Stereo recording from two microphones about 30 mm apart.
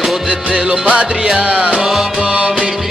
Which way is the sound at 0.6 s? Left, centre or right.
Right.